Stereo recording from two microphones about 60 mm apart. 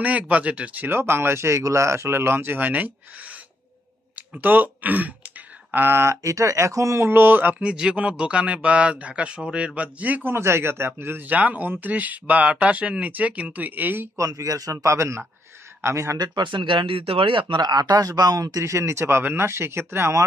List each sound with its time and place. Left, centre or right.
0.0 s speech: right
0.8 s speech: right
7.0 s speech: right
7.6 s speech: centre
10.3 s speech: right
11.2 s speech: right
14.1 s a man's voice: right
17.7 s speech: right
18.6 s speech: right